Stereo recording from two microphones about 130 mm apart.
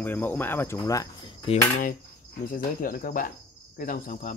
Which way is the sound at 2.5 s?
90° left.